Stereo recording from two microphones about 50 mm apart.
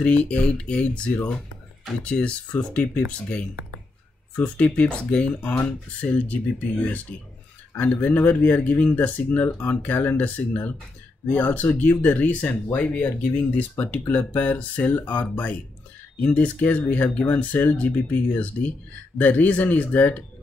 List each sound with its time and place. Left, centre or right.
0.0 s speech: left
1.1 s speech: left